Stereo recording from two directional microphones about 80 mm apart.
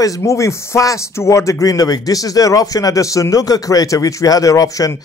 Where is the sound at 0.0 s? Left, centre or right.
Left.